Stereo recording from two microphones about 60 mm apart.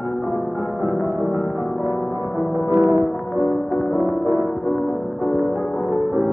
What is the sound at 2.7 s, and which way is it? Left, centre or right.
Music, right.